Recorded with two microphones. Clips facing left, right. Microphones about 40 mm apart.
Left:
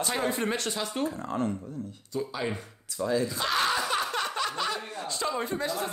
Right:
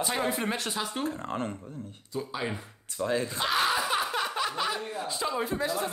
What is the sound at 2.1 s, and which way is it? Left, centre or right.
Speech, centre.